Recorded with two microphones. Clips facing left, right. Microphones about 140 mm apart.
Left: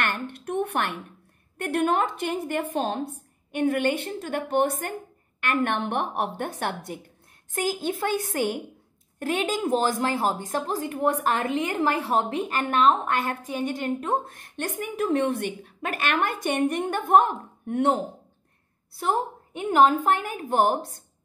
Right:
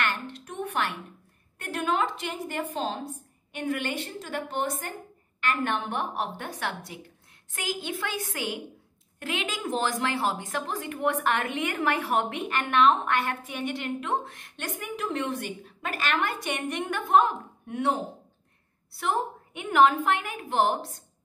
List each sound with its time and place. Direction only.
0.0 s a sound: 55° left (ahead or behind)
1.6 s a woman's voice: 60° left (ahead or behind)
18.9 s a woman's voice: 35° left (ahead or behind)